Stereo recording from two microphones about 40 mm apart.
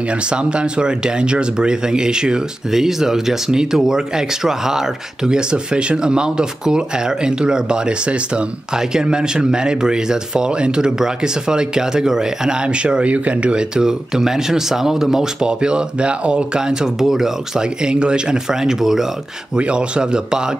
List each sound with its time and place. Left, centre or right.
0.3 s speech: right
12.6 s speech: right; by 15.2 s centre
15.4 s speech: right
17.0 s speech: centre
17.8 s speech: right
18.5 s speech: centre
19.5 s speech: right